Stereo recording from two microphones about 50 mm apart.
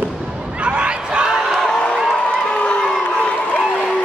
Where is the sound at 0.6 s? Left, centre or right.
Right.